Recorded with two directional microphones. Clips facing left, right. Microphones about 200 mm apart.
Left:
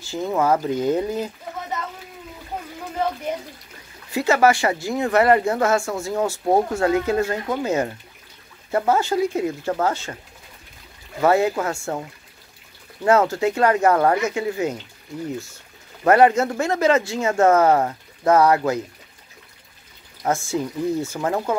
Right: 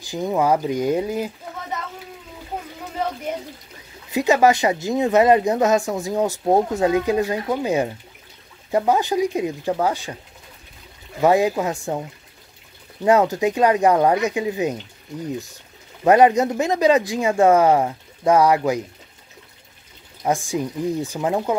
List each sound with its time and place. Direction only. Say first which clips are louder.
0.0 s speech: right 1 dB; 15° right (ahead or behind)
4.1 s speech: right 1 dB; 15° right (ahead or behind)
11.1 s speech: right 1 dB; 15° right (ahead or behind)
20.2 s speech: right 1 dB; 15° right (ahead or behind)